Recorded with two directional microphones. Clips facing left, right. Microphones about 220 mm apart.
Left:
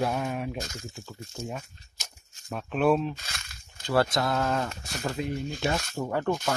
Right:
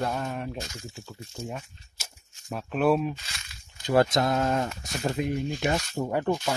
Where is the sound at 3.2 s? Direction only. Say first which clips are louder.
Left 3 dB; 50° left (ahead or behind).